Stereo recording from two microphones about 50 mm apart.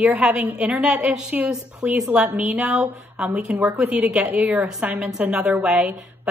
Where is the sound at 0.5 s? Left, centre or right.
Right.